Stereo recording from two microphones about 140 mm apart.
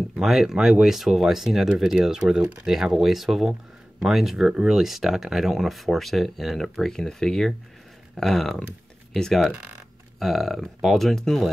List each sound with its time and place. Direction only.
0.2 s speech: centre (ahead or behind)